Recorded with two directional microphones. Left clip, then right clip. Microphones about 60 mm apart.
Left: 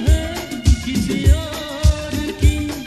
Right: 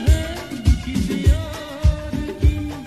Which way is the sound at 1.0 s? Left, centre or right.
Left.